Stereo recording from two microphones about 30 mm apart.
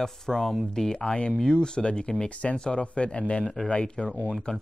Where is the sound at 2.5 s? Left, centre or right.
Left.